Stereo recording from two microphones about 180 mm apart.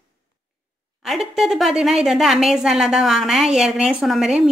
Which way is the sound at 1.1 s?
Centre (ahead or behind).